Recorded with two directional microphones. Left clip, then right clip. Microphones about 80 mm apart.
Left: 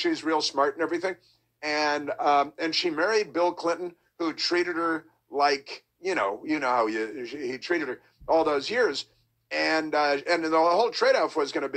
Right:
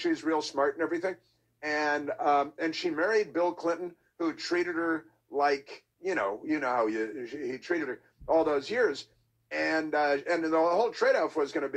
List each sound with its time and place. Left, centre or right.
0.0 s speech: left